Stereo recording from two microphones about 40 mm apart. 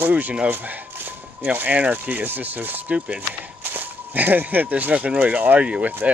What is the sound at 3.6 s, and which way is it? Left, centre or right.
Speech, right.